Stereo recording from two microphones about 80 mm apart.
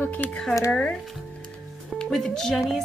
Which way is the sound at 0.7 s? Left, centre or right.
Centre.